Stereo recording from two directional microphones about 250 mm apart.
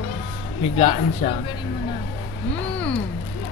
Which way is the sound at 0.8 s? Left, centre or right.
Left.